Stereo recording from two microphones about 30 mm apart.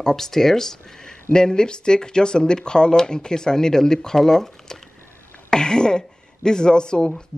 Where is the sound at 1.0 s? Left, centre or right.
Left.